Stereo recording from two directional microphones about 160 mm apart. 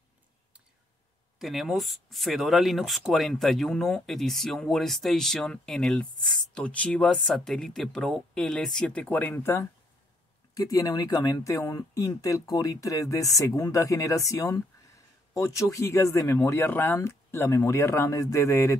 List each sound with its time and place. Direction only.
1.4 s speech: centre (ahead or behind); by 18.8 s 15° left (ahead or behind)